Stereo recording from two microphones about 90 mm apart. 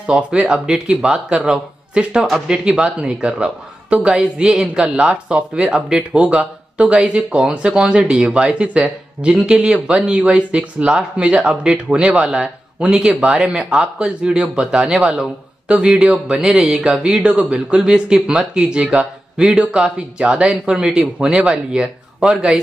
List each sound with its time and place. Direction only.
0.0 s speech: 10° right (ahead or behind)